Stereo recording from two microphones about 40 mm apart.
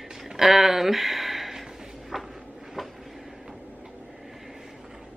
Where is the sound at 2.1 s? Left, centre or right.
Centre.